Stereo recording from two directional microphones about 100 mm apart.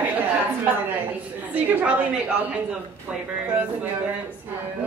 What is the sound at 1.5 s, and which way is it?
A woman's voice, 15° right (ahead or behind).